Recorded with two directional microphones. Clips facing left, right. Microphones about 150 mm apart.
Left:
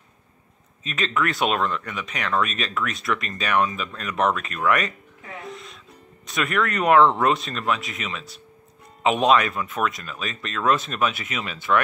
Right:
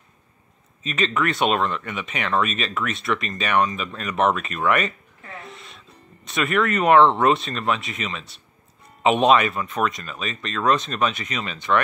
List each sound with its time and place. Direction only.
0.8 s speech: centre (ahead or behind)
5.5 s music: centre (ahead or behind)
6.2 s speech: centre (ahead or behind)